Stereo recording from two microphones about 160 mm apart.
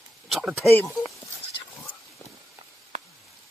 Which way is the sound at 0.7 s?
15° left (ahead or behind).